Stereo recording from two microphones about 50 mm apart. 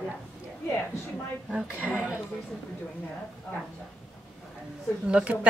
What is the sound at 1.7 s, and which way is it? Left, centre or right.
Speech, right.